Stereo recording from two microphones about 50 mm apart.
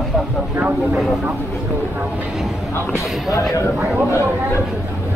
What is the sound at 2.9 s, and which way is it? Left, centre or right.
Speech, left.